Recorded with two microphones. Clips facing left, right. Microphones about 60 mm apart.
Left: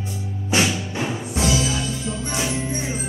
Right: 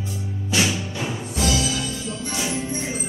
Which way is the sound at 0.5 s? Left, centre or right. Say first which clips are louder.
Left 2 dB; left.